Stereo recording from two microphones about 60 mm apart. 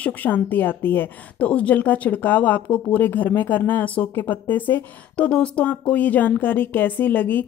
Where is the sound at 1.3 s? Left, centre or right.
Left.